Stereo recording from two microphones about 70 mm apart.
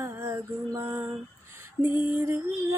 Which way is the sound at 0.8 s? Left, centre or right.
Right.